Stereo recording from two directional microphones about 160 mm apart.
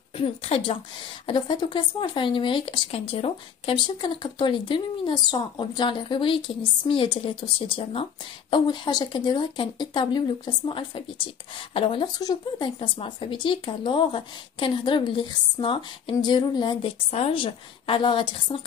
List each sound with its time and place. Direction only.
0.1 s a woman's voice: 35° left (ahead or behind)